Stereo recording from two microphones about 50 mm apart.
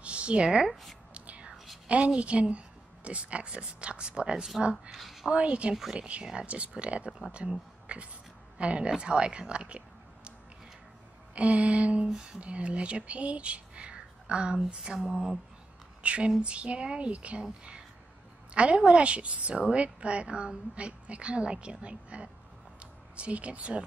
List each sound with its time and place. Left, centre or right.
0.0 s a woman's voice: right
1.1 s whispering: right
1.9 s a woman's voice: right
4.9 s speech: centre
5.3 s a woman's voice: right
7.1 s speech: centre
7.8 s a sound: right
8.5 s speech: right
11.3 s a woman's voice: right
14.8 s a sound: centre
16.0 s a woman's voice: right